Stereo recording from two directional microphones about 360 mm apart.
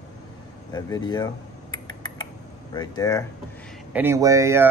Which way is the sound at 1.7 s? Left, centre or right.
Left.